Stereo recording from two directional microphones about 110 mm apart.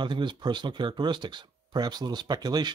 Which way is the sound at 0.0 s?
45° right (ahead or behind).